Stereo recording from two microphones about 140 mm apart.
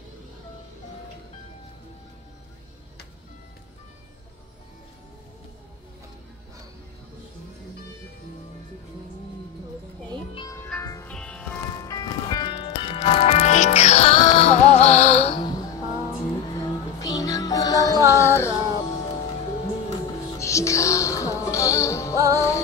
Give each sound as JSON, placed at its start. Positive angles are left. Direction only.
{"t": 11.1, "sound": "music", "side_deg": 5}
{"t": 11.8, "sound": "music", "side_deg": 25}
{"t": 12.8, "sound": "music", "side_deg": 40}
{"t": 15.4, "sound": "music", "side_deg": 25}
{"t": 20.3, "sound": "music", "side_deg": 20}
{"t": 22.1, "sound": "music", "side_deg": -20}